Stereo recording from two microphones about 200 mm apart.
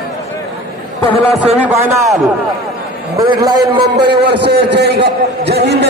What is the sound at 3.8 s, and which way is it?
A man's voice, 55° right (ahead or behind).